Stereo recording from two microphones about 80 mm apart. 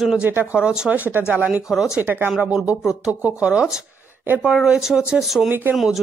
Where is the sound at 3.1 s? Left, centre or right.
Centre.